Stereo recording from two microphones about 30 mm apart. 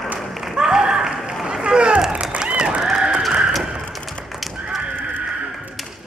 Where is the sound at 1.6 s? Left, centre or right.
Right.